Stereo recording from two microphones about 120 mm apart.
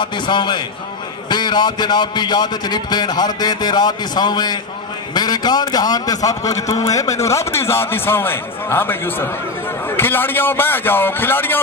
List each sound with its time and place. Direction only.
0.0 s a man's voice: 40° left (ahead or behind); by 11.6 s 15° left (ahead or behind)